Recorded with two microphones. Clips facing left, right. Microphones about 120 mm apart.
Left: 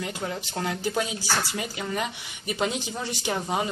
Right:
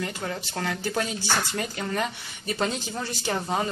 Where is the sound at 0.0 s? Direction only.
15° left (ahead or behind).